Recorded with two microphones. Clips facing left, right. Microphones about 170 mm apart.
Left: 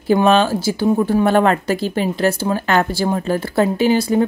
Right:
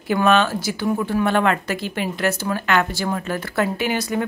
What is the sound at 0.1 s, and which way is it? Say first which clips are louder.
Speech: left 4 dB; 30° left (ahead or behind).